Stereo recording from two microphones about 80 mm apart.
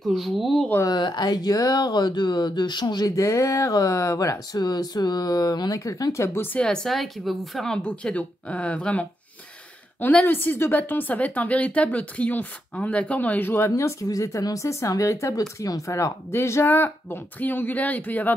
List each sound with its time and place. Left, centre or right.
0.1 s speech: centre
0.8 s speech: left
4.6 s speech: left
6.6 s speech: centre
7.8 s speech: centre
13.7 s speech: left